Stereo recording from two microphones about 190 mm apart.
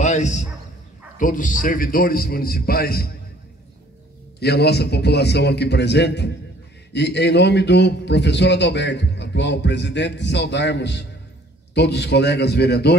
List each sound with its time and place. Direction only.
0.0 s a sound: 40° left (ahead or behind)
1.1 s a man's voice: 45° left (ahead or behind)
4.4 s a man's voice: 60° left (ahead or behind)